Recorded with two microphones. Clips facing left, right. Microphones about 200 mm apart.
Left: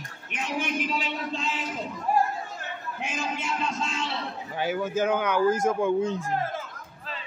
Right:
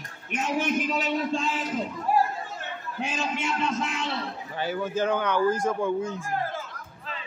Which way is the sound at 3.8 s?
55° right (ahead or behind).